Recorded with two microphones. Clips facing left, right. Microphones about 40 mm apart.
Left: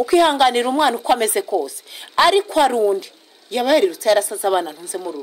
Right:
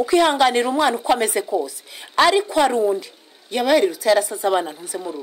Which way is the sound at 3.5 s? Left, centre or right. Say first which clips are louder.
Left 1 dB; centre.